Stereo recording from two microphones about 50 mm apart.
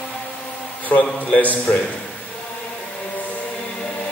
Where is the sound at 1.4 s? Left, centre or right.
Left.